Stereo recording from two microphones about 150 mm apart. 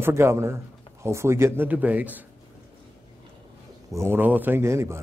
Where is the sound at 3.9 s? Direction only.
15° right (ahead or behind).